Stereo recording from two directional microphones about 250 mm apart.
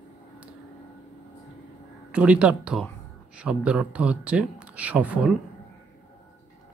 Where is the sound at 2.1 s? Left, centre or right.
Centre.